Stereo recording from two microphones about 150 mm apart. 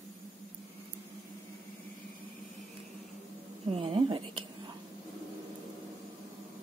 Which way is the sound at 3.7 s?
40° right (ahead or behind).